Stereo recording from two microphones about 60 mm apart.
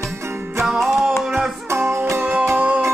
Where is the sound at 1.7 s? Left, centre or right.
Right.